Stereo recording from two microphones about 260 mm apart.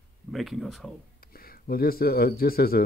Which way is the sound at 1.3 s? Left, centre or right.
Left.